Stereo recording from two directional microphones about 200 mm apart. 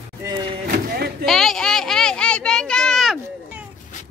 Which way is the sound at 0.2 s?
20° right (ahead or behind).